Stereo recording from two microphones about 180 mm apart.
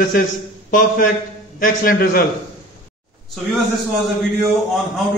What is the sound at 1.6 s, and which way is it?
Speech, 50° left (ahead or behind).